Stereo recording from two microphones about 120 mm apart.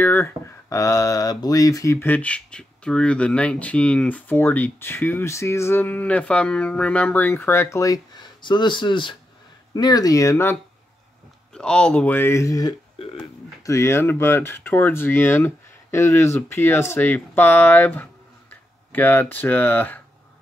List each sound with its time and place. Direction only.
0.0 s speech: 20° left (ahead or behind)
11.5 s speech: 5° left (ahead or behind)